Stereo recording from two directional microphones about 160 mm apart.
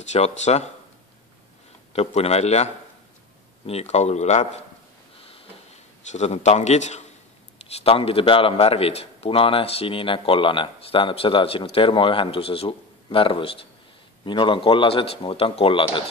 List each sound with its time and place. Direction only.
0.0 s speech: 45° left (ahead or behind)
2.0 s speech: 40° left (ahead or behind)
6.1 s speech: 45° left (ahead or behind)